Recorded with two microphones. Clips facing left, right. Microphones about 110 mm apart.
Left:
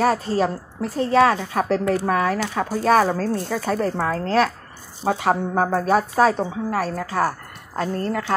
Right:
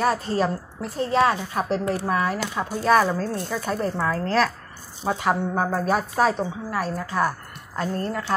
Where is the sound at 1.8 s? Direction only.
60° left (ahead or behind); by 6.8 s 35° left (ahead or behind).